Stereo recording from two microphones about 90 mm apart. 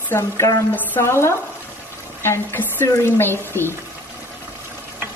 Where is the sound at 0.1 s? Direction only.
30° left (ahead or behind).